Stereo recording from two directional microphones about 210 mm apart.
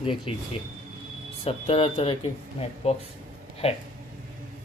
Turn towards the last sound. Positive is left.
turn(degrees=25)  # may be behind; listen again after turning